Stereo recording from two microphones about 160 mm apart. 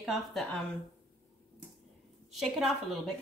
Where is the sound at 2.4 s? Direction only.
Centre (ahead or behind).